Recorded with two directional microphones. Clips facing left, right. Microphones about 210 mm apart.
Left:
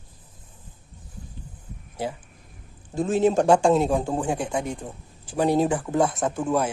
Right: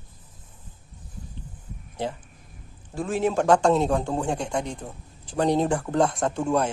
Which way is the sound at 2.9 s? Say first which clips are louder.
Left 4 dB; 25° left (ahead or behind).